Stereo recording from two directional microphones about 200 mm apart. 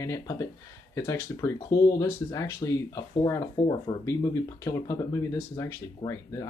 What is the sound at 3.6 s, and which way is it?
Speech, 40° left (ahead or behind).